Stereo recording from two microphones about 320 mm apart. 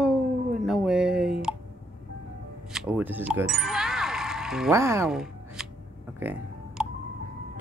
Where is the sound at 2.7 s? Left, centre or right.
Centre.